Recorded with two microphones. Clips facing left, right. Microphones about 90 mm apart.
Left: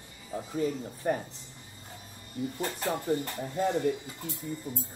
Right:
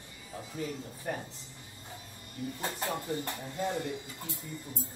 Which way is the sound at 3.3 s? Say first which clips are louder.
Left 5 dB; 30° left (ahead or behind).